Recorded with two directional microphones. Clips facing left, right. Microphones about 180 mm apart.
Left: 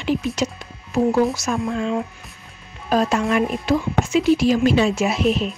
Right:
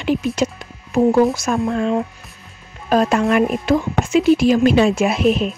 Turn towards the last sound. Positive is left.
turn(degrees=-55)  # may be behind; listen again after turning